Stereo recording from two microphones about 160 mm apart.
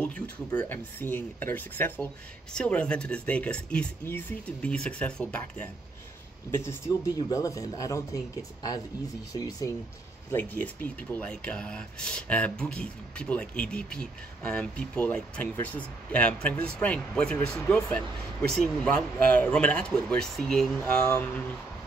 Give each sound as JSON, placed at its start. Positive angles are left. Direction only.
{"t": 0.0, "sound": "speech", "side_deg": 10}
{"t": 9.3, "sound": "speech", "side_deg": 25}
{"t": 10.3, "sound": "speech", "side_deg": 10}
{"t": 21.0, "sound": "speech", "side_deg": 15}